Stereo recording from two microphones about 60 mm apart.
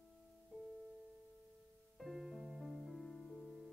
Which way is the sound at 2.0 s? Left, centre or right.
Centre.